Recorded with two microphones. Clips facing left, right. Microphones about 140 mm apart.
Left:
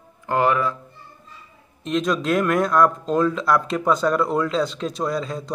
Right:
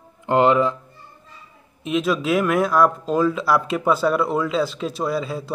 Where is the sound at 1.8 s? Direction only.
5° right (ahead or behind).